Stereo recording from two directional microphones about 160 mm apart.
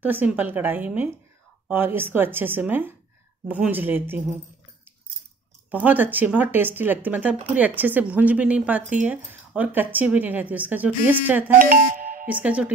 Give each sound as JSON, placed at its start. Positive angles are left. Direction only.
{"t": 0.0, "sound": "speech", "side_deg": -10}
{"t": 5.7, "sound": "speech", "side_deg": -10}
{"t": 11.5, "sound": "speech", "side_deg": -60}
{"t": 12.3, "sound": "speech", "side_deg": -10}